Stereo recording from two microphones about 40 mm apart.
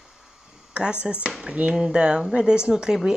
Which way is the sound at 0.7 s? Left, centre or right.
Right.